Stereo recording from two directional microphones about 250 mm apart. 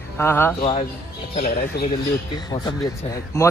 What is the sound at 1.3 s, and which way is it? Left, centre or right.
Speech, left.